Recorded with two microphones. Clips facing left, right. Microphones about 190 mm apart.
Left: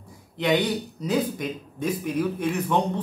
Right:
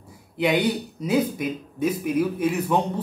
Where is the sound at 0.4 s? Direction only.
10° right (ahead or behind).